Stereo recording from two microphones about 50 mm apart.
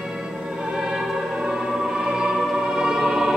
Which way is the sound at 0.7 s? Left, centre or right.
Centre.